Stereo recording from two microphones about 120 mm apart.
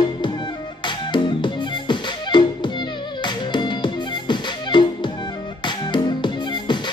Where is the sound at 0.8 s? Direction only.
40° left (ahead or behind).